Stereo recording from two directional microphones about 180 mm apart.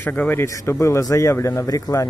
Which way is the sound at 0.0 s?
10° left (ahead or behind).